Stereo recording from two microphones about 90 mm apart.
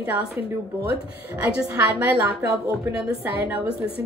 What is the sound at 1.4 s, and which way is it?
Speech, 20° right (ahead or behind).